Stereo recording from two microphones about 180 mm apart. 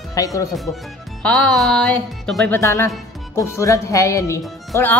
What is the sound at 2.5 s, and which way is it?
Speech, 15° left (ahead or behind).